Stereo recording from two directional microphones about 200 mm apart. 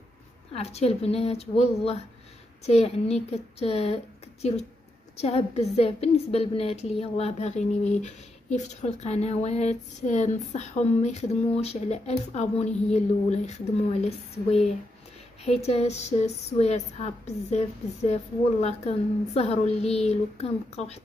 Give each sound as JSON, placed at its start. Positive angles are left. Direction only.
{"t": 0.5, "sound": "a woman's voice", "side_deg": 30}
{"t": 15.6, "sound": "a woman's voice", "side_deg": 35}